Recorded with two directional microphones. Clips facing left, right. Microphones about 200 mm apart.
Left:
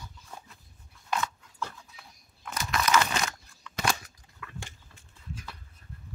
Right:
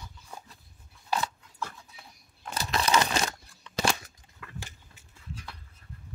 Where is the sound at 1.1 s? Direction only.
35° right (ahead or behind).